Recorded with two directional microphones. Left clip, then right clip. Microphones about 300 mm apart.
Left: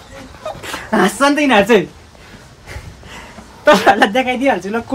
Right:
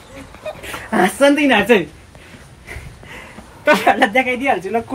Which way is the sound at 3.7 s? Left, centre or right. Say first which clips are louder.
Left 3 dB; left.